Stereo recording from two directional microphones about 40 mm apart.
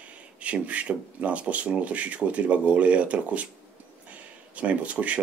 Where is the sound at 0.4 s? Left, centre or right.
Right.